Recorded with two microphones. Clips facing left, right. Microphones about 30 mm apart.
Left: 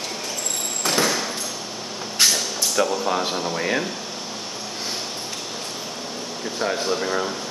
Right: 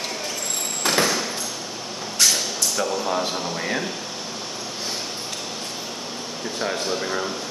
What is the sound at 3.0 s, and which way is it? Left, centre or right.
Speech, centre.